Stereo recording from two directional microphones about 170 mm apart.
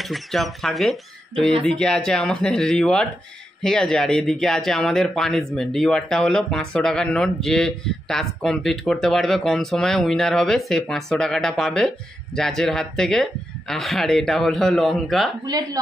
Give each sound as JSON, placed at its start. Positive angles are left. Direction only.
{"t": 0.0, "sound": "speech", "side_deg": 0}
{"t": 15.4, "sound": "speech", "side_deg": -25}